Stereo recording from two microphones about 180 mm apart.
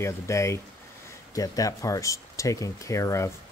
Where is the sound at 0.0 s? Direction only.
15° left (ahead or behind).